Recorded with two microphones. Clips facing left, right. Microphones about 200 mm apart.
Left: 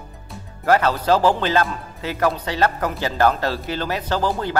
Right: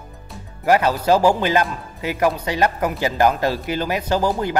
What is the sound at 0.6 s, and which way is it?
Speech, 15° right (ahead or behind).